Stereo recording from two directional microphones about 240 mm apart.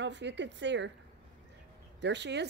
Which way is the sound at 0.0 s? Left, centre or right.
Right.